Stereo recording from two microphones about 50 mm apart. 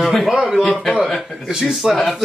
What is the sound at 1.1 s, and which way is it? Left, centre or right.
Speech, centre.